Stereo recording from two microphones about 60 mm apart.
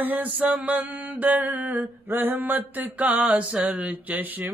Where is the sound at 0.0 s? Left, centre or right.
Right.